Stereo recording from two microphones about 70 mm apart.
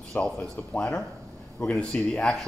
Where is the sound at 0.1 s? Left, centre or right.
Centre.